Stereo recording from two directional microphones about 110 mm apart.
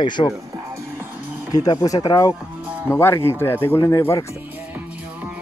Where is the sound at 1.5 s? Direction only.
35° left (ahead or behind).